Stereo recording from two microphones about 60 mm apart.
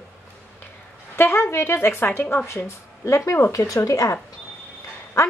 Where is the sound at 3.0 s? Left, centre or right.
Left.